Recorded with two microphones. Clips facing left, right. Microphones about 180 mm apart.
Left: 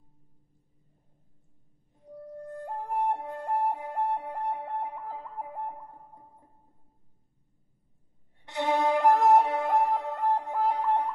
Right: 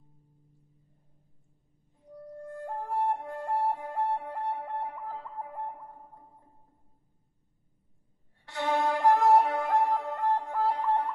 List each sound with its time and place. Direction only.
2.3 s flute: 20° left (ahead or behind)
8.5 s music: 20° left (ahead or behind)
9.4 s music: centre (ahead or behind)
10.4 s music: 20° left (ahead or behind)